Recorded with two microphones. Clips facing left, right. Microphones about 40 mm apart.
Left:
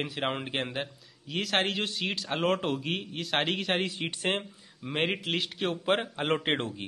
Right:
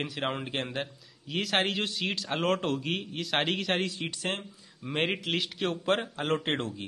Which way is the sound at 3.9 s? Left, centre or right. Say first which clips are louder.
Left 3 dB; left.